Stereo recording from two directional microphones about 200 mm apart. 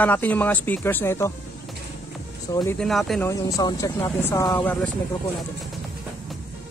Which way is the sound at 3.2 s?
15° left (ahead or behind).